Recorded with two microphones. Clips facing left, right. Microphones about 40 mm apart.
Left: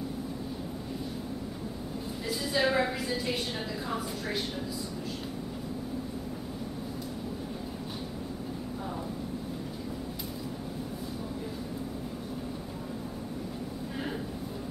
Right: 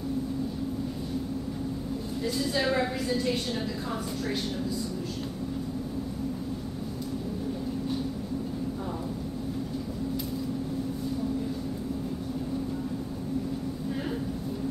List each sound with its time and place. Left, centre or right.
2.2 s a woman's voice: centre